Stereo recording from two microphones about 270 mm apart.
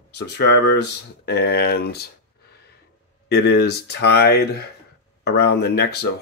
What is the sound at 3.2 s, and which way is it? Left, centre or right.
Speech, left.